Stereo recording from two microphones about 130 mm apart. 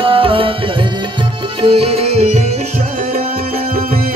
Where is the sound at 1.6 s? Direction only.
50° right (ahead or behind).